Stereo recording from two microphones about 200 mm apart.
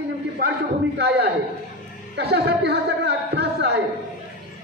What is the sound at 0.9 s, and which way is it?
A man's voice, 55° right (ahead or behind).